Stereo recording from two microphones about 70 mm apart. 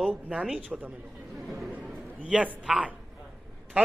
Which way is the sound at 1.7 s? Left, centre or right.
Right.